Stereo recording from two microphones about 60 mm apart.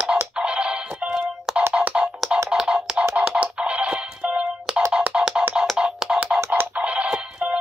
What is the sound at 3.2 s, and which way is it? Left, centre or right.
Music, centre.